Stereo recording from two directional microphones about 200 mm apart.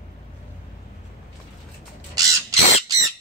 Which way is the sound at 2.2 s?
15° right (ahead or behind).